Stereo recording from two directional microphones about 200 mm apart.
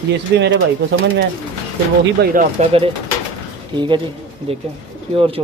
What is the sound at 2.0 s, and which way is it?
Speech, 50° right (ahead or behind).